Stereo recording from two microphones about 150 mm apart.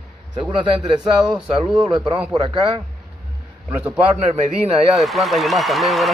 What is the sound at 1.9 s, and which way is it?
Speech, 30° right (ahead or behind).